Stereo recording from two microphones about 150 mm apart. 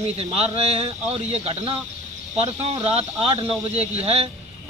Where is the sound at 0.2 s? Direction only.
45° right (ahead or behind).